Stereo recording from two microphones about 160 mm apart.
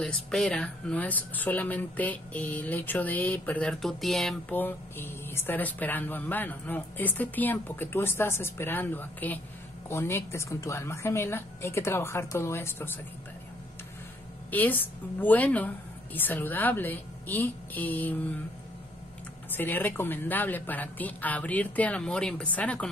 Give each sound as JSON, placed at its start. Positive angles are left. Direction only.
{"t": 0.0, "sound": "speech", "side_deg": 5}
{"t": 14.5, "sound": "speech", "side_deg": 10}
{"t": 19.5, "sound": "speech", "side_deg": 10}